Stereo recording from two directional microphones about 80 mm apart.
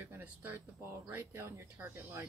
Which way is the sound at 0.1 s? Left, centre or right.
Right.